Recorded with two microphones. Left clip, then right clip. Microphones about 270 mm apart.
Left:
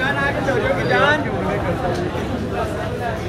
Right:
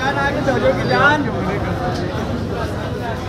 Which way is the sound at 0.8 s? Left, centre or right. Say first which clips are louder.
Right 1 dB; right.